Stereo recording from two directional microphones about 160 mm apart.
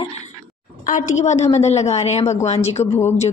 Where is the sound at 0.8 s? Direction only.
50° left (ahead or behind).